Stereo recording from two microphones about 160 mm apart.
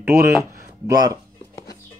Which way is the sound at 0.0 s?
15° right (ahead or behind).